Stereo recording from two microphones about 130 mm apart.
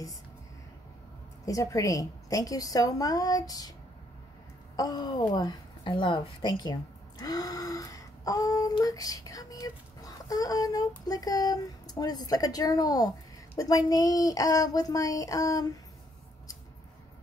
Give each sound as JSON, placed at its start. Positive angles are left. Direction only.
{"t": 1.4, "sound": "a woman's voice", "side_deg": 25}
{"t": 4.7, "sound": "a sound", "side_deg": 30}
{"t": 8.8, "sound": "a woman's voice", "side_deg": 25}